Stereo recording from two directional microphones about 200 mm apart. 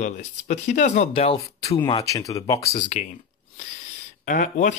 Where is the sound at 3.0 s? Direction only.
35° left (ahead or behind).